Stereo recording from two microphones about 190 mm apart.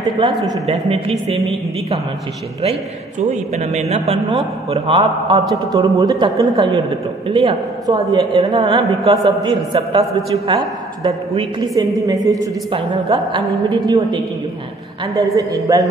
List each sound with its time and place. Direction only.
0.7 s a woman's voice: 30° right (ahead or behind)
3.5 s a woman's voice: 35° right (ahead or behind)
5.4 s a man's voice: centre (ahead or behind)
5.8 s a woman's voice: 20° right (ahead or behind)